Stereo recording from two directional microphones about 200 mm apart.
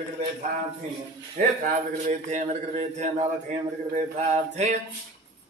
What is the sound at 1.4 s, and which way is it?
Speech, 40° right (ahead or behind).